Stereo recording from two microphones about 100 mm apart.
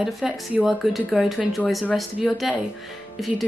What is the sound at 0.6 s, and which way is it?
Speech, centre (ahead or behind).